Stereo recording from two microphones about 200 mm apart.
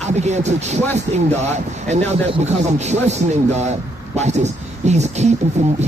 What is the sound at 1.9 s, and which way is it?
Speech, 35° right (ahead or behind).